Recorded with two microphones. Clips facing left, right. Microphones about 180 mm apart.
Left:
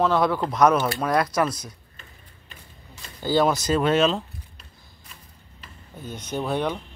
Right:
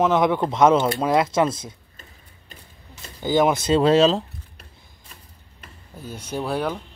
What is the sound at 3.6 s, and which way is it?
Speech, 30° right (ahead or behind).